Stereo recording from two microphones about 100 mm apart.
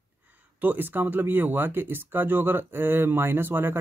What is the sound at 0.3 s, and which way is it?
Speech, 15° right (ahead or behind).